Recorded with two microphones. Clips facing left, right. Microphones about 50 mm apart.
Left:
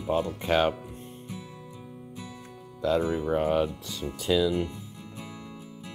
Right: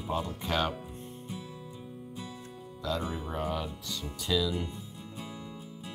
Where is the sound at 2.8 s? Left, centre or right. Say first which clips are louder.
Left 8 dB; left.